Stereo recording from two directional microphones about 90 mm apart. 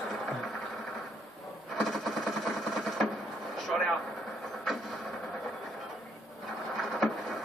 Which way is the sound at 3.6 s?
Centre (ahead or behind).